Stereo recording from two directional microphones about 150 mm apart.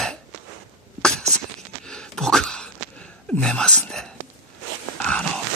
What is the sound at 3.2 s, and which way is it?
Whispering, 5° left (ahead or behind).